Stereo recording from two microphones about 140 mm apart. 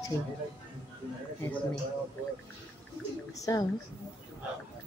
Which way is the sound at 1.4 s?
15° left (ahead or behind).